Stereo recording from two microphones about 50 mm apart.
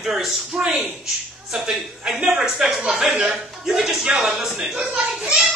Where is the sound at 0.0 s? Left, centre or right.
Centre.